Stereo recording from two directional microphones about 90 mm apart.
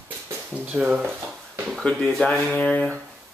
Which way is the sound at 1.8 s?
10° left (ahead or behind).